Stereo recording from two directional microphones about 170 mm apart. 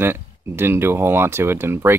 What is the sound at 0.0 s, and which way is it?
Speech, 15° right (ahead or behind).